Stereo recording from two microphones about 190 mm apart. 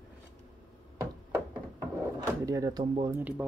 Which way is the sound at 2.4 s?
20° right (ahead or behind).